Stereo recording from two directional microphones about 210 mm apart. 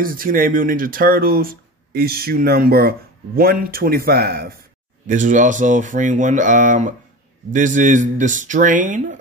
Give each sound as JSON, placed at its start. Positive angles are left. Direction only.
{"t": 0.0, "sound": "speech", "side_deg": -40}
{"t": 5.0, "sound": "speech", "side_deg": -35}